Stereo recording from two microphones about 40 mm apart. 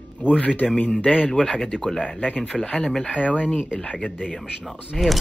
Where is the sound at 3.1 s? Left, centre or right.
Right.